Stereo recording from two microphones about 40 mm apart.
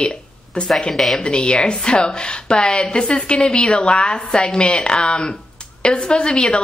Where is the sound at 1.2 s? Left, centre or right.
Left.